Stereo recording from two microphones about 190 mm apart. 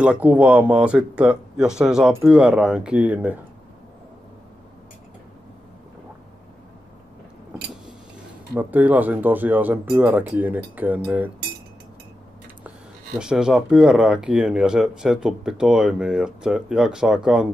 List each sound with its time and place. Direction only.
0.0 s speech: 5° right (ahead or behind)
8.5 s speech: 10° right (ahead or behind)
13.2 s speech: 5° right (ahead or behind)